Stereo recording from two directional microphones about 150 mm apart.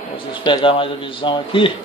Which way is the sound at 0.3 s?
30° left (ahead or behind).